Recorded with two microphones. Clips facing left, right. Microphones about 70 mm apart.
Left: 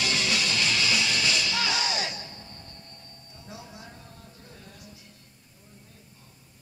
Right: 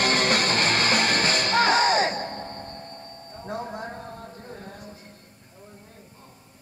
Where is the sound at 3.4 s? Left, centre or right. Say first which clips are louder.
Right 12 dB; right.